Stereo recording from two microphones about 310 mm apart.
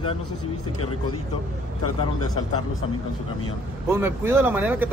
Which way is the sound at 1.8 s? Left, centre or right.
Left.